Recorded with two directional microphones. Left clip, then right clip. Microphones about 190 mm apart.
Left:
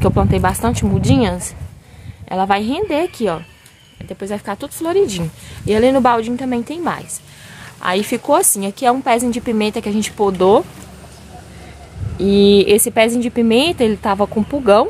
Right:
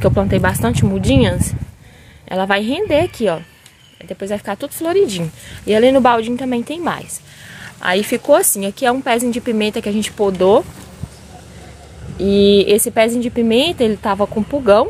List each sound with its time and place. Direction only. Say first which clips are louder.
0.0 s a woman's voice: right 1 dB; centre (ahead or behind)
12.2 s a woman's voice: even; 10° left (ahead or behind)